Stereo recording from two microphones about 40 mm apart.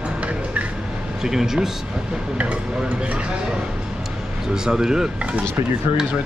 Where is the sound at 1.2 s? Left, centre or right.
Centre.